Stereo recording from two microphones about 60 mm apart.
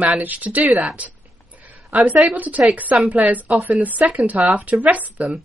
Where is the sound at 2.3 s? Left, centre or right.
Right.